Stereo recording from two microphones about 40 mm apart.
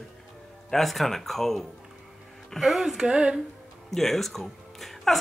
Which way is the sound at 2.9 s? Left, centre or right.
Centre.